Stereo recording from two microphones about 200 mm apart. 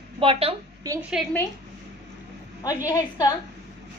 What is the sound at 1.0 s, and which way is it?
Speech, 5° right (ahead or behind).